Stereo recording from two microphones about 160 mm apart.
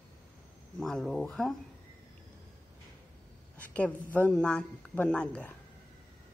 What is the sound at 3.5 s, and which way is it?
Speech, 10° left (ahead or behind).